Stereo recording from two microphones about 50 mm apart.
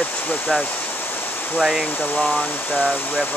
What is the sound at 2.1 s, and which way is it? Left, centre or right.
Speech, centre.